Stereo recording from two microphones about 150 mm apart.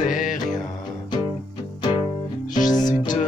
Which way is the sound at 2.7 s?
25° left (ahead or behind).